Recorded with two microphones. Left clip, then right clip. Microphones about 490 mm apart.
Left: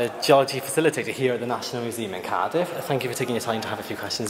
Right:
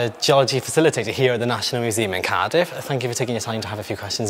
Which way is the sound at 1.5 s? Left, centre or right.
Right.